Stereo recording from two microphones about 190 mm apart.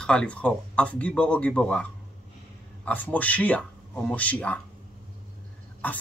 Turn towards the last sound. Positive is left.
turn(degrees=10)  # may be behind; listen again after turning